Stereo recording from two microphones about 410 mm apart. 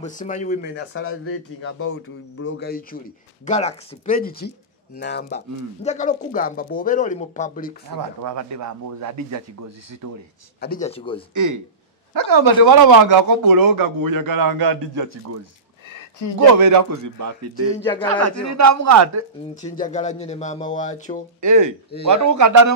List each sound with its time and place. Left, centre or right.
0.0 s speech: centre
8.2 s a man's voice: right
10.6 s speech: centre
12.1 s a man's voice: right
16.5 s a man's voice: right
19.6 s speech: centre
21.4 s a man's voice: right